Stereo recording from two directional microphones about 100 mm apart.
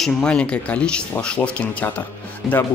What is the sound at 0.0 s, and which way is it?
Speech, 10° left (ahead or behind).